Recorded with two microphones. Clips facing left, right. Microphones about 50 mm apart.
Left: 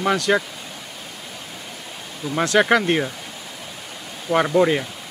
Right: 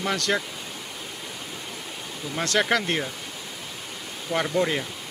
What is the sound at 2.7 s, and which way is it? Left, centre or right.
Speech, left.